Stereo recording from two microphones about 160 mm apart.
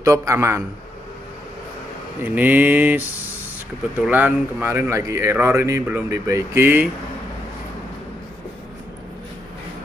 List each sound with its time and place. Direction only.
0.0 s a man's voice: 20° right (ahead or behind)
2.2 s speech: 10° right (ahead or behind)
4.0 s speech: 10° right (ahead or behind)